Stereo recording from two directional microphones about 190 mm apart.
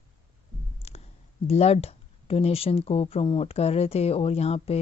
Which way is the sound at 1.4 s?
35° left (ahead or behind).